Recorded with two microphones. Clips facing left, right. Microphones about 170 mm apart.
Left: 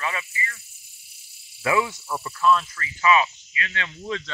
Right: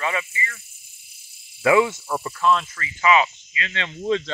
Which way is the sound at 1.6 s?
20° right (ahead or behind).